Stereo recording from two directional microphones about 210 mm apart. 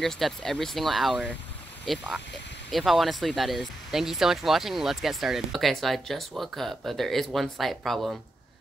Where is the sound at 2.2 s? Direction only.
55° left (ahead or behind).